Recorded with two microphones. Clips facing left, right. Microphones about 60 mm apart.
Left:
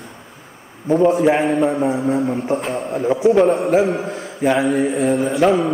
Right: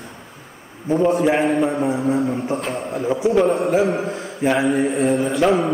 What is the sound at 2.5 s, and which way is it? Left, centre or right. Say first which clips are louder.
Speech: left 3 dB; left.